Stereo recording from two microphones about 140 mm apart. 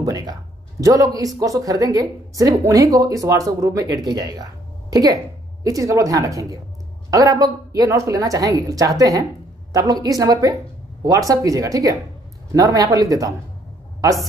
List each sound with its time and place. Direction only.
0.0 s a woman's voice: 25° right (ahead or behind)